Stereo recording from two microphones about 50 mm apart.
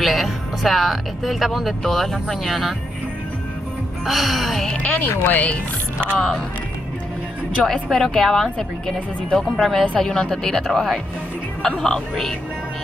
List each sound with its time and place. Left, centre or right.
0.0 s speech: centre
4.0 s speech: centre
4.6 s speech: left
5.0 s speech: left
6.0 s speech: left
7.6 s a woman's voice: centre